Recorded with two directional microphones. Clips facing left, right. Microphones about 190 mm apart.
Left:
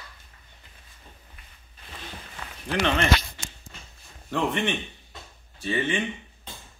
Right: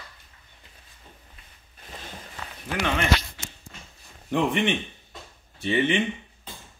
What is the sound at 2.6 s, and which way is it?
Speech, 10° right (ahead or behind).